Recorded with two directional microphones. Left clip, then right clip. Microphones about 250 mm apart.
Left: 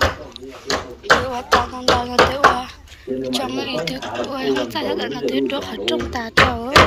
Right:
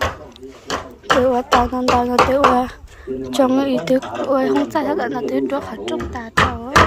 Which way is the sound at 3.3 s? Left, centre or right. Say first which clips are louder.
Right 9 dB; right.